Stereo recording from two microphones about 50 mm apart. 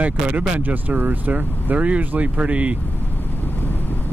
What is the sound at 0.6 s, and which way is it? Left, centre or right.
Speech, right.